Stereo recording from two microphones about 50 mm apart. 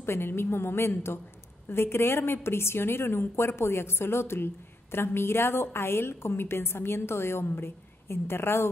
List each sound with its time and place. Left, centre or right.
0.0 s a woman's voice: left